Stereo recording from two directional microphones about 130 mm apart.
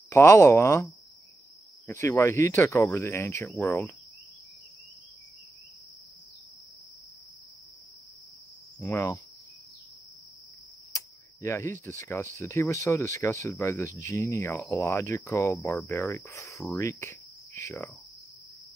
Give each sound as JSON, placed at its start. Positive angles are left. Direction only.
{"t": 0.1, "sound": "speech", "side_deg": 20}
{"t": 3.6, "sound": "cricket", "side_deg": 15}
{"t": 8.8, "sound": "cricket", "side_deg": 15}
{"t": 11.4, "sound": "speech", "side_deg": 20}